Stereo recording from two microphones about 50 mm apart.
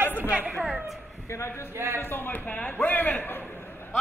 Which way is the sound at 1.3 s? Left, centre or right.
Left.